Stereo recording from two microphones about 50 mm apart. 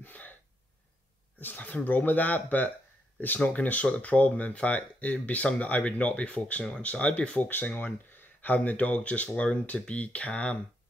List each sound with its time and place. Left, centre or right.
0.0 s gasp: left
1.4 s speech: left
7.4 s speech: left